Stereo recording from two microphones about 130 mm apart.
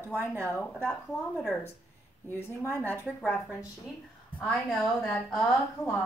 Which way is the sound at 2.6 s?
15° left (ahead or behind).